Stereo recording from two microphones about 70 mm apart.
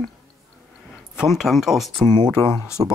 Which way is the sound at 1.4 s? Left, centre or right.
Centre.